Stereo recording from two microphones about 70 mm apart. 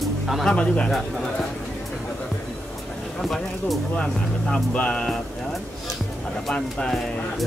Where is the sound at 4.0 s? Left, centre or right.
Centre.